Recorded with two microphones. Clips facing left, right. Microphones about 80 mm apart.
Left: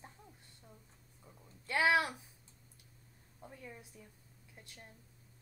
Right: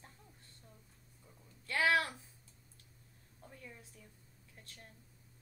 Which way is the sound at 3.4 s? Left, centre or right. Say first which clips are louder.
Left 3 dB; centre.